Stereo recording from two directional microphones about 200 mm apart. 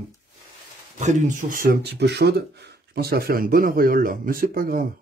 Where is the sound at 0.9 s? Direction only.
40° right (ahead or behind).